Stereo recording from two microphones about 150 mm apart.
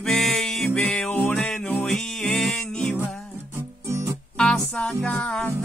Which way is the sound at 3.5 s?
20° right (ahead or behind).